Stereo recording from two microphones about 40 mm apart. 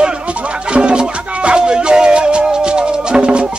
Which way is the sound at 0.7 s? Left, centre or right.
Right.